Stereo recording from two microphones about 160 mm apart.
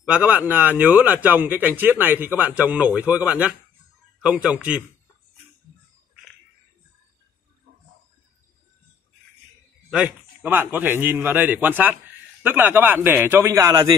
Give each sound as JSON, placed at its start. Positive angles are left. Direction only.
{"t": 0.0, "sound": "speech", "side_deg": -10}
{"t": 9.8, "sound": "speech", "side_deg": -5}